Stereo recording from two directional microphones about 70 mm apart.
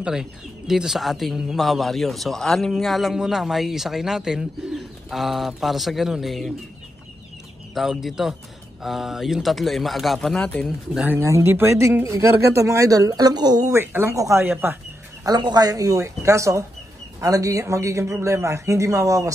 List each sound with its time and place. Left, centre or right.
0.0 s speech: centre
7.7 s speech: centre
10.4 s speech: centre
11.1 s speech: right
13.7 s speech: right
14.1 s speech: right
15.2 s speech: right